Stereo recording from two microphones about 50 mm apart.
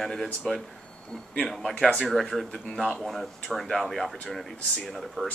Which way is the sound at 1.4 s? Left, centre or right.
Centre.